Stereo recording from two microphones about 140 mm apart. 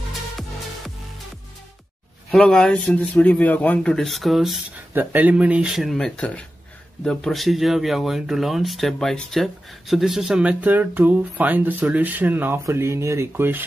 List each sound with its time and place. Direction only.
2.3 s speech: 5° left (ahead or behind)
4.9 s speech: 10° right (ahead or behind)